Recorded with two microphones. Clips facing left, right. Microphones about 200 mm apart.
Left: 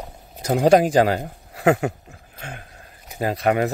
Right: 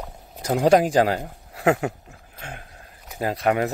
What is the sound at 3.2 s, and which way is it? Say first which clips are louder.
Speech: left 2 dB; 25° left (ahead or behind).